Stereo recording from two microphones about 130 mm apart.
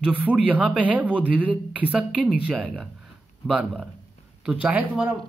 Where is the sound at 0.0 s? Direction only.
10° right (ahead or behind).